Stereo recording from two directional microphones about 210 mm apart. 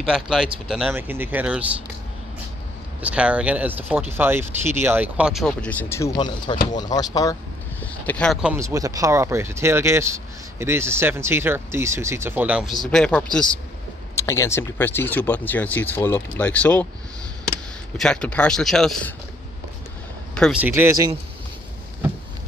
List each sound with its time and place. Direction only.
0.0 s speech: centre (ahead or behind)
3.0 s speech: 5° right (ahead or behind); by 7.3 s 15° left (ahead or behind)
7.8 s speech: 5° left (ahead or behind)
8.5 s speech: 15° right (ahead or behind); by 16.8 s 5° left (ahead or behind)
17.9 s speech: 5° left (ahead or behind)
20.6 s speech: 10° right (ahead or behind)